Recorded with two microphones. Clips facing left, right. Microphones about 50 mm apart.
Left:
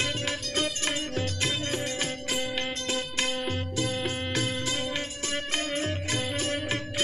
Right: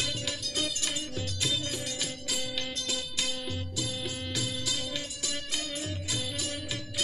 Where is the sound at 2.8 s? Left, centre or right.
Left.